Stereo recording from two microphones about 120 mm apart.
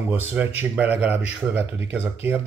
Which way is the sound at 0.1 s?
15° right (ahead or behind).